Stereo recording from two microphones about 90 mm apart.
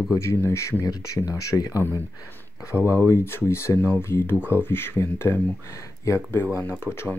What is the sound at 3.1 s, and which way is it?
Speech, 25° left (ahead or behind).